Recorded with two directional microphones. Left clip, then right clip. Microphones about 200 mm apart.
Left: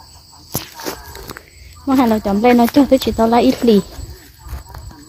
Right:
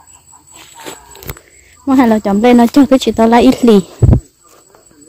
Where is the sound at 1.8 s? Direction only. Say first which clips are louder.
Right 4 dB; 45° right (ahead or behind).